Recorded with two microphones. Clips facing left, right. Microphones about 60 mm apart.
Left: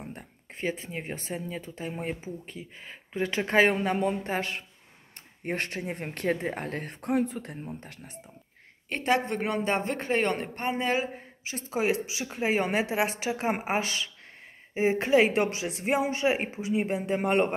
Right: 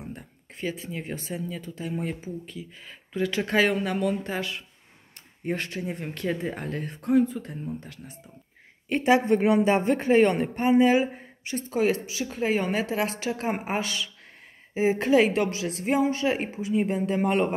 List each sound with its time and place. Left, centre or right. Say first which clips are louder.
0.0 s speech: right 2 dB; left
8.8 s a woman's voice: right 5 dB; centre
11.4 s a woman's voice: right 3 dB; centre